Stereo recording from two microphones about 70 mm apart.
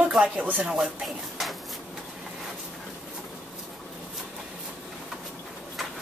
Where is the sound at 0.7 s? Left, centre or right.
Centre.